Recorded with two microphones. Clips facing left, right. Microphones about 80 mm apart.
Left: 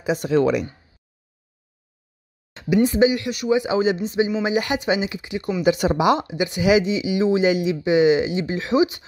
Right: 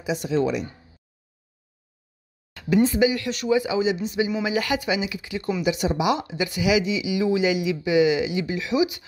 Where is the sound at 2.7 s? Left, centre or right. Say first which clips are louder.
Left 2 dB; centre.